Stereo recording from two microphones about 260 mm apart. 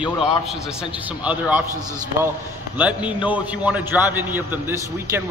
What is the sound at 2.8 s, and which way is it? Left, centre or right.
A man's voice, centre.